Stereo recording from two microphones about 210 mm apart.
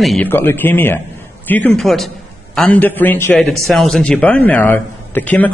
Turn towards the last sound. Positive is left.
turn(degrees=10)  # may be behind; listen again after turning